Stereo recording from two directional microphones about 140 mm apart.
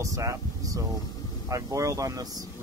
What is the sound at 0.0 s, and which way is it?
Speech, 20° right (ahead or behind).